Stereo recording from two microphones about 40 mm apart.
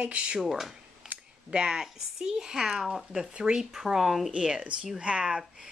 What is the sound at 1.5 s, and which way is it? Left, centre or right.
A woman's voice, right.